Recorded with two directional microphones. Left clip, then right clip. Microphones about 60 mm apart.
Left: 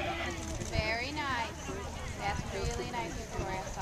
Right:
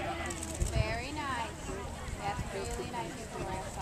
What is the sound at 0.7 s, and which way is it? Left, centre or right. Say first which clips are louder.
Speech: left 3 dB; left.